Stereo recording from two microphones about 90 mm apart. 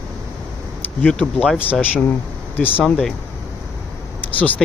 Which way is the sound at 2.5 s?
20° left (ahead or behind).